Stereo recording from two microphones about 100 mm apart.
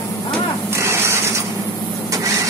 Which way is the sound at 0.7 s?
25° right (ahead or behind).